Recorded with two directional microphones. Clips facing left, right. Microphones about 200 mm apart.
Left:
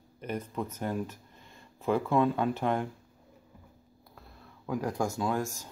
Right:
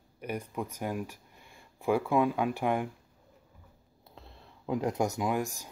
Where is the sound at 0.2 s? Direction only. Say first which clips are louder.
Left 1 dB; 10° right (ahead or behind).